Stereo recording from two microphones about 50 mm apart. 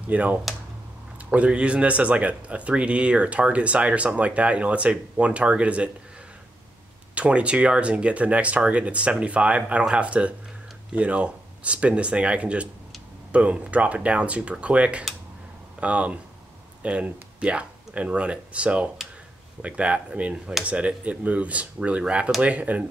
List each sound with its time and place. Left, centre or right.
0.1 s speech: right
7.2 s speech: right